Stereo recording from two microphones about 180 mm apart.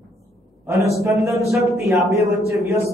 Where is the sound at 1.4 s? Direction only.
Centre (ahead or behind).